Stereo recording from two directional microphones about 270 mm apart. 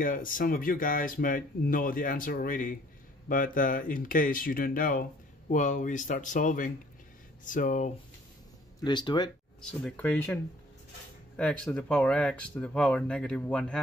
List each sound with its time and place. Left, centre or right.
0.0 s speech: left
8.8 s speech: centre
9.6 s speech: centre